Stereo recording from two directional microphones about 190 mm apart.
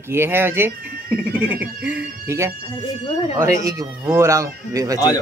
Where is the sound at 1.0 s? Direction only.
50° right (ahead or behind).